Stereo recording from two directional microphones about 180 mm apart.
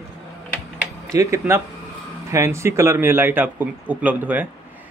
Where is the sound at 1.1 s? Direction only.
15° right (ahead or behind).